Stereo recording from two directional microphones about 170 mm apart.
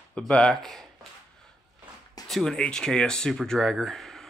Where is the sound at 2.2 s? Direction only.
Centre (ahead or behind).